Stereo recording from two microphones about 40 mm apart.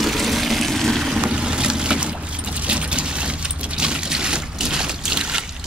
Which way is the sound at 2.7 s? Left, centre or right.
Right.